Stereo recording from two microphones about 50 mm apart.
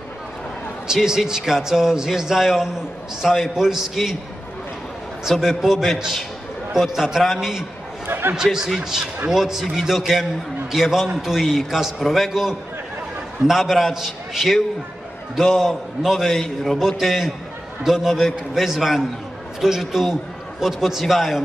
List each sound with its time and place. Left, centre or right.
0.8 s a man's voice: centre
5.3 s a man's voice: centre
5.6 s a man's voice: centre
8.1 s a sound: right
8.4 s a man's voice: centre